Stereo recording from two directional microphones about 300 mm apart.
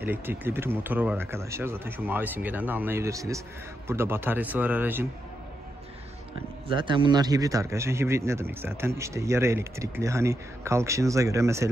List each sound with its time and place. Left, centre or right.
0.0 s speech: centre
6.7 s speech: centre